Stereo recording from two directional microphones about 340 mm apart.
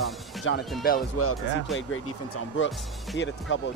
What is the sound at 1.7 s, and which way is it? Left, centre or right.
Speech, left.